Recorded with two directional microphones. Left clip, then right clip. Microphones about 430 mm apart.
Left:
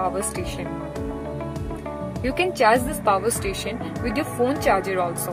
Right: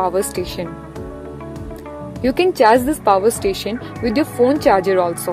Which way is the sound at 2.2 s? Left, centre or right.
Centre.